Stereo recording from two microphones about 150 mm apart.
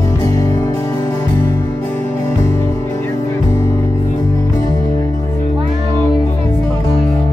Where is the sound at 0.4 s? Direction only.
25° left (ahead or behind).